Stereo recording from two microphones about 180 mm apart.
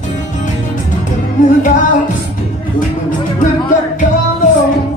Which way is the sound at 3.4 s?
45° left (ahead or behind).